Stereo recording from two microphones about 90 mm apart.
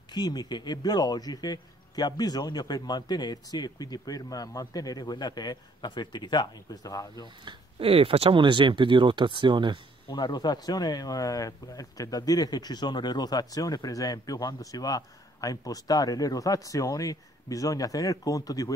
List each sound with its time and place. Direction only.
0.1 s speech: 50° left (ahead or behind)
7.4 s speech: 90° right; by 9.8 s 60° right (ahead or behind)
10.1 s speech: 50° left (ahead or behind)